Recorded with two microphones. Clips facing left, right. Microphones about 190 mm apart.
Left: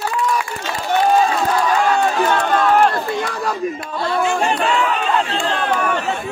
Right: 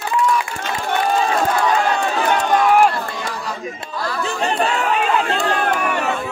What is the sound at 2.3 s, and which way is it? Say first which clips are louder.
Run: even; 15° right (ahead or behind).